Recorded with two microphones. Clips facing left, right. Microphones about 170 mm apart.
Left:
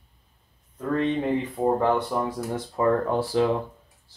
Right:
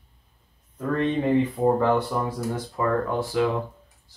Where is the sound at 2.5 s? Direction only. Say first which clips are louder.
Left 3 dB; 30° left (ahead or behind).